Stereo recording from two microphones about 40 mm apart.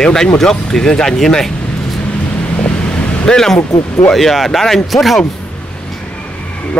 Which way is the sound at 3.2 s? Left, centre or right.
Centre.